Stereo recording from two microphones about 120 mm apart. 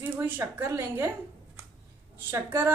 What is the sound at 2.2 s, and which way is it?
Speech, 20° right (ahead or behind).